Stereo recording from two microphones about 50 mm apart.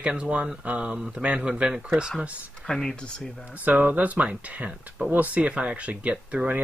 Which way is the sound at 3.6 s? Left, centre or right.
Right.